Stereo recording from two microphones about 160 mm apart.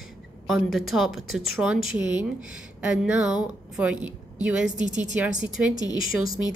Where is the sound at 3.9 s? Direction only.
25° left (ahead or behind).